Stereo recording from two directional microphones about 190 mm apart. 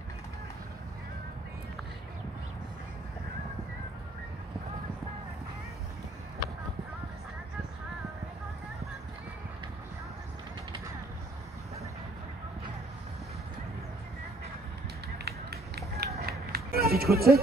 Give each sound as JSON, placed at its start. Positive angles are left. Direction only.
{"t": 15.1, "sound": "run", "side_deg": -55}